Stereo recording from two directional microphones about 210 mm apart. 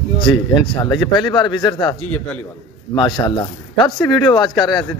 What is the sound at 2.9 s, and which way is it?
Speech, 20° left (ahead or behind).